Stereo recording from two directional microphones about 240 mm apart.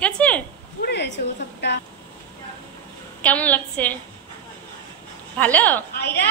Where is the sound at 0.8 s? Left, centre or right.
Left.